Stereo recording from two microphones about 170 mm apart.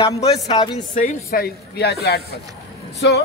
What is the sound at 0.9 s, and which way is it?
Speech, 60° left (ahead or behind).